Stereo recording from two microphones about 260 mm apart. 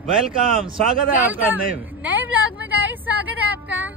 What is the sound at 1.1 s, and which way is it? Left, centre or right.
Speech, centre.